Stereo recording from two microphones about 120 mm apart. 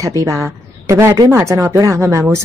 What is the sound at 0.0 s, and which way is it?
Speech, 25° right (ahead or behind).